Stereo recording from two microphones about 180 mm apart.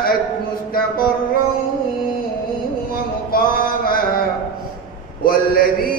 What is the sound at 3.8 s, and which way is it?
Mantra, 55° left (ahead or behind).